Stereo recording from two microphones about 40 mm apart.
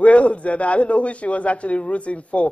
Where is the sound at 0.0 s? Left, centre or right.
Left.